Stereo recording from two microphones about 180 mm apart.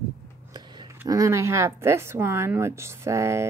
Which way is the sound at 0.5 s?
25° right (ahead or behind).